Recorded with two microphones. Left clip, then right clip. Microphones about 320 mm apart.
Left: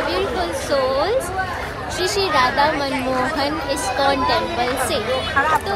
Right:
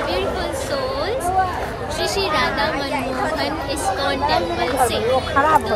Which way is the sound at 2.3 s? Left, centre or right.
Centre.